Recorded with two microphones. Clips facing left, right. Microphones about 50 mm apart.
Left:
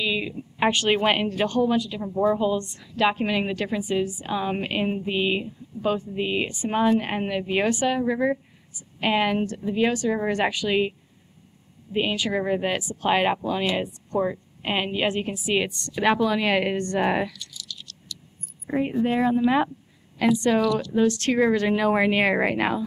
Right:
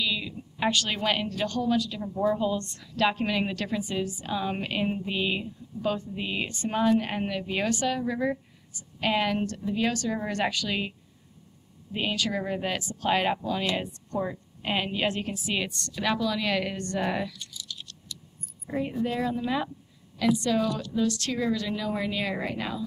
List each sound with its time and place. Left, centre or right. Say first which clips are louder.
0.0 s a woman's voice: left 4 dB; left
17.4 s a sound: left 1 dB; right
18.7 s a woman's voice: left 6 dB; left